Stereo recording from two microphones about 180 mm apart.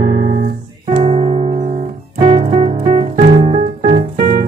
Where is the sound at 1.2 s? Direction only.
40° right (ahead or behind).